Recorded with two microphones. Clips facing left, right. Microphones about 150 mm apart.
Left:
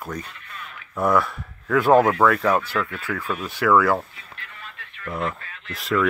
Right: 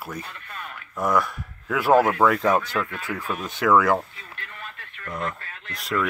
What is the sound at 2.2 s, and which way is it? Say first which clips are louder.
Speech: left 1 dB; 20° right (ahead or behind).